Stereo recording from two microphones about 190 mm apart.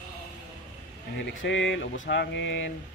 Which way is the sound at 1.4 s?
75° left (ahead or behind).